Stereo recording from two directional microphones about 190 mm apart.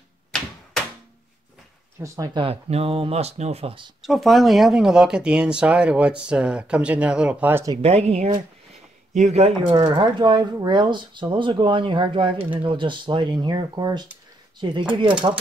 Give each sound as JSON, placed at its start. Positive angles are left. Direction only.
{"t": 2.0, "sound": "speech", "side_deg": -15}
{"t": 4.0, "sound": "speech", "side_deg": 0}
{"t": 7.7, "sound": "speech", "side_deg": -35}